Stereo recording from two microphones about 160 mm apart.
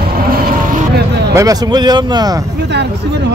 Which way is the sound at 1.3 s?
20° right (ahead or behind).